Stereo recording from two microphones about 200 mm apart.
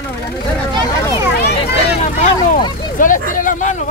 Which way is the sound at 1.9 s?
40° left (ahead or behind).